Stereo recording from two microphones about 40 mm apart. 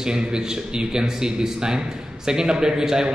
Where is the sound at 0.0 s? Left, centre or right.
Centre.